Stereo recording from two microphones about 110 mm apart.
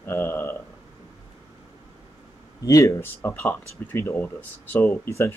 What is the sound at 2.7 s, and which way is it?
Speech, 30° left (ahead or behind).